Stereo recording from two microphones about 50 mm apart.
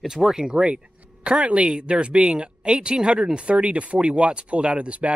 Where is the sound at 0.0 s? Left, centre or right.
Centre.